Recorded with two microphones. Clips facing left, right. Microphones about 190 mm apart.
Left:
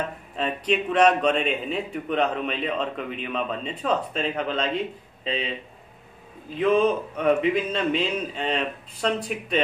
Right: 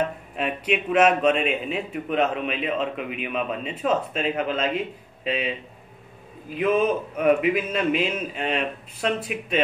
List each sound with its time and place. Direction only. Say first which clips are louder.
0.4 s a man's voice: left 1 dB; 10° right (ahead or behind)
6.5 s a man's voice: left 1 dB; 10° right (ahead or behind)